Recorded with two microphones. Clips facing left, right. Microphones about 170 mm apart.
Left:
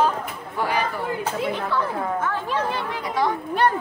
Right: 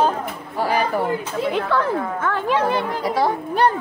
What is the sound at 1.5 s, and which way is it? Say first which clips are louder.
Speech: right 5 dB; 90° right.